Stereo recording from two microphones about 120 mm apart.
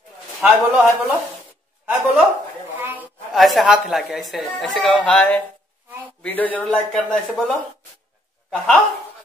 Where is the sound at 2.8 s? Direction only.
15° right (ahead or behind).